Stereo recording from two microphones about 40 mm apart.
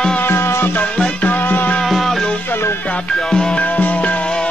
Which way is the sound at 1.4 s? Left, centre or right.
Left.